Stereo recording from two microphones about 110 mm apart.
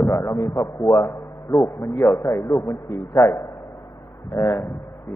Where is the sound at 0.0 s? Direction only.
25° left (ahead or behind).